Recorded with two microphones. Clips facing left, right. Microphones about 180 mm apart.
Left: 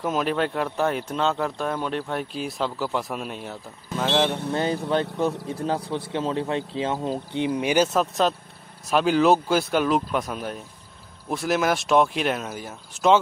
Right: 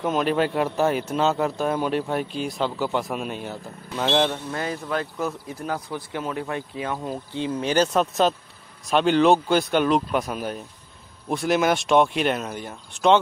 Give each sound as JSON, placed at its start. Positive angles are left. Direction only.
{"t": 0.0, "sound": "speech", "side_deg": 0}
{"t": 4.5, "sound": "speech", "side_deg": 25}